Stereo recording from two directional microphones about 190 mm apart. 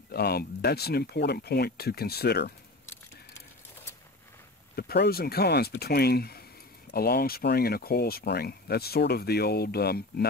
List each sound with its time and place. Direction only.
0.1 s speech: 55° left (ahead or behind)
4.7 s speech: 55° left (ahead or behind)